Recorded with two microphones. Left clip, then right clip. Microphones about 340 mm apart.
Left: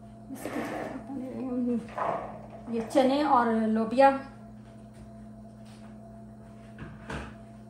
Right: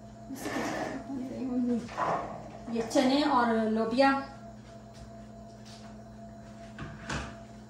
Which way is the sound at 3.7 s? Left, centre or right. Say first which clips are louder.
Left 6 dB; left.